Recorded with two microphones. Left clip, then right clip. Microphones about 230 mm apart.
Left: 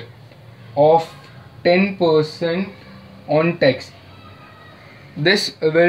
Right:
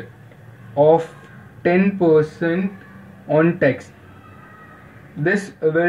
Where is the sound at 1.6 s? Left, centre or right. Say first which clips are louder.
Left 2 dB; left.